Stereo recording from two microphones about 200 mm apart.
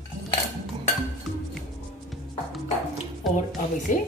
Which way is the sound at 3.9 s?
40° left (ahead or behind).